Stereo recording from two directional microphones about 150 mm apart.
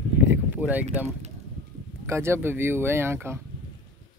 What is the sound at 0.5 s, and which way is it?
Speech, 10° right (ahead or behind).